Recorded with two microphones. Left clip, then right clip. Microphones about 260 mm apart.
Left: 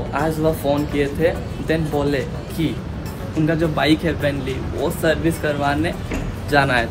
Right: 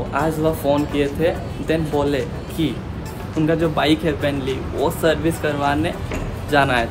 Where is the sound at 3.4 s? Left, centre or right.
Centre.